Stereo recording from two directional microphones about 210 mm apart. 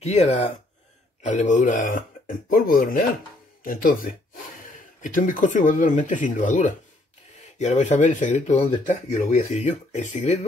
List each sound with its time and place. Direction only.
0.0 s speech: 30° left (ahead or behind)